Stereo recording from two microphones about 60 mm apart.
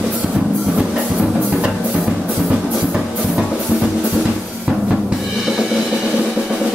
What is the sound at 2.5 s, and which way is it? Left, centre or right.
Music, centre.